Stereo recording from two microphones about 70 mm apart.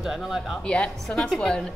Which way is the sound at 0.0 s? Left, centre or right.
Centre.